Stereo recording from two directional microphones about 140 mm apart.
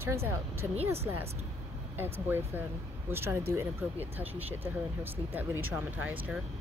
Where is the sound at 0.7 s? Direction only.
45° right (ahead or behind).